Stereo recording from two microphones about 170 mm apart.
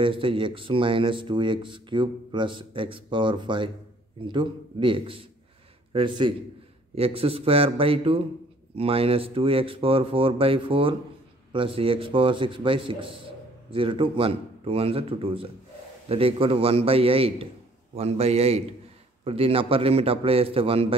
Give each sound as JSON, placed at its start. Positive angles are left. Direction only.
{"t": 0.0, "sound": "speech", "side_deg": -30}